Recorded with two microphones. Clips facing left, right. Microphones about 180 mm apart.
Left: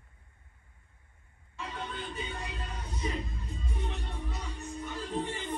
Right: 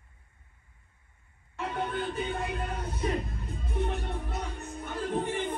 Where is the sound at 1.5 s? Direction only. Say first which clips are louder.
Right 7 dB; 60° right (ahead or behind).